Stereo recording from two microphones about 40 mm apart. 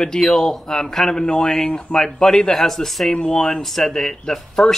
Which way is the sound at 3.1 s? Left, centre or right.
Centre.